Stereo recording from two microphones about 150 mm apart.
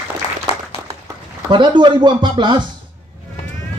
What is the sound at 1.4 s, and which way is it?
Speech, 30° right (ahead or behind).